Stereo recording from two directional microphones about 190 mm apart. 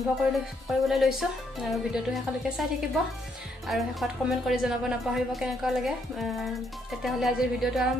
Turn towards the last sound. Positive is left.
turn(degrees=0)  # may be behind; listen again after turning